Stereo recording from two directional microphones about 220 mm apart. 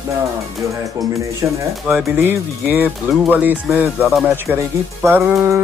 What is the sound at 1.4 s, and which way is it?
Speech, 10° right (ahead or behind).